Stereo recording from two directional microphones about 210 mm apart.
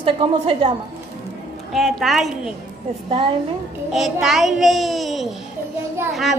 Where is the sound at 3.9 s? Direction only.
Centre (ahead or behind).